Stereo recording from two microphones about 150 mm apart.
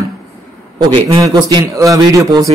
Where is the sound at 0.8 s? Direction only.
35° right (ahead or behind).